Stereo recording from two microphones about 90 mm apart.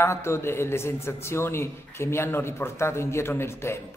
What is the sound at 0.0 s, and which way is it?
A man's voice, 30° left (ahead or behind).